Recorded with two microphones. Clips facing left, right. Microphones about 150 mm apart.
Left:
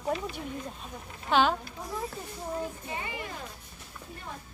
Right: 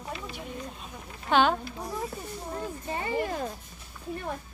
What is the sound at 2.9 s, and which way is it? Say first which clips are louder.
Speech: right 11 dB; 40° right (ahead or behind).